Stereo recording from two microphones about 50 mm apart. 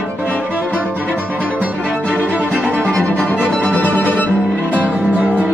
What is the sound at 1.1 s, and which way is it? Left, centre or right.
Music, left.